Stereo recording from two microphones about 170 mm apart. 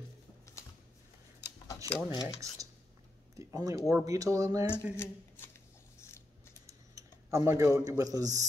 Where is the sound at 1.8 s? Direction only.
20° right (ahead or behind).